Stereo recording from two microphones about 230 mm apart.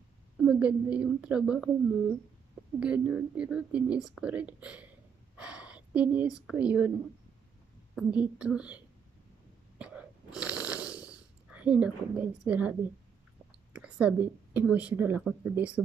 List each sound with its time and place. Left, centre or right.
0.4 s speech: centre
5.3 s a sound: centre
7.9 s speech: centre
10.3 s snoring: centre
13.7 s speech: centre